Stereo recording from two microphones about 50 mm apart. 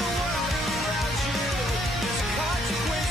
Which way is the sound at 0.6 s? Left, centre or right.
Centre.